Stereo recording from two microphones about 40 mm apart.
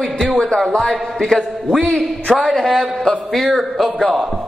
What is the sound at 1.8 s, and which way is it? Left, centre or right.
Speech, left.